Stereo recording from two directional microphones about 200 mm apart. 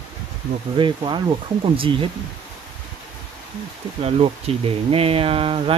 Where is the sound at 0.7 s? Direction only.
25° right (ahead or behind).